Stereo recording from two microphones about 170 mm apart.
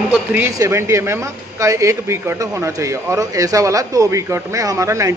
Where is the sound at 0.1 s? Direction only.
10° right (ahead or behind).